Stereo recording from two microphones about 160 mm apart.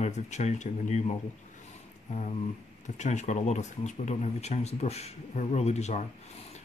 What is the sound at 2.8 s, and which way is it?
Speech, 45° left (ahead or behind).